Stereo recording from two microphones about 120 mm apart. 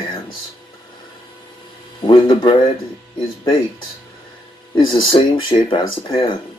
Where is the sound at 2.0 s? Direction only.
45° left (ahead or behind).